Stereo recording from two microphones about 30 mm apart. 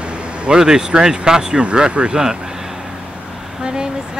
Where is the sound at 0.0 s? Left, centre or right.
Right.